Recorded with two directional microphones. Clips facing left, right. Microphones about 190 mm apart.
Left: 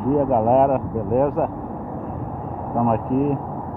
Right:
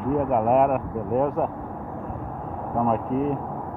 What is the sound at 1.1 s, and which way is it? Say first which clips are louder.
Speech: left 4 dB; 15° left (ahead or behind).